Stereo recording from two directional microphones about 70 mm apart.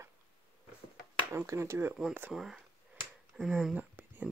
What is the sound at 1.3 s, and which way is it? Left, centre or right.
Speech, right.